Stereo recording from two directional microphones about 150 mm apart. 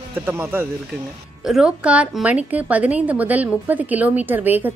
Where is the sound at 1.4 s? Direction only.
5° right (ahead or behind).